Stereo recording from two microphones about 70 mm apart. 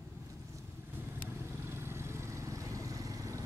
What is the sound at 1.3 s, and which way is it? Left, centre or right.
Vehicle, right.